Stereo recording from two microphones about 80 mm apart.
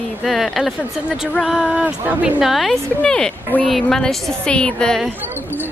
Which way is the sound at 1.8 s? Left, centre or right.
Centre.